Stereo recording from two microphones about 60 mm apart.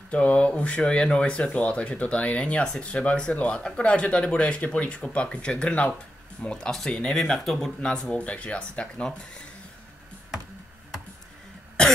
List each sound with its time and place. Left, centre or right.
0.1 s speech: left; by 7.7 s centre
7.8 s speech: centre